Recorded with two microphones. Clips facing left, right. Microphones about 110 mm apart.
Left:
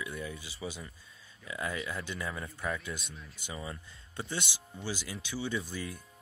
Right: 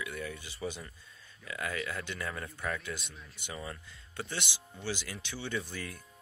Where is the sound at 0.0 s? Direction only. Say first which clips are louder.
Even; 25° left (ahead or behind).